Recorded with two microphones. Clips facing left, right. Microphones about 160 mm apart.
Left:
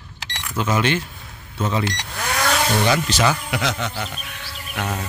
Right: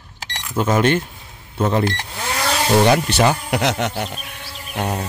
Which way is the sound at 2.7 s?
55° right (ahead or behind).